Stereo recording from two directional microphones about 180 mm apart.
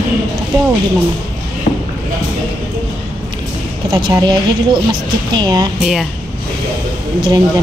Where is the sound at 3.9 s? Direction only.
25° right (ahead or behind).